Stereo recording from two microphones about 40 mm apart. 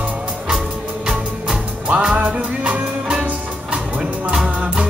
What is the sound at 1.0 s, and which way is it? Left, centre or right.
Music, centre.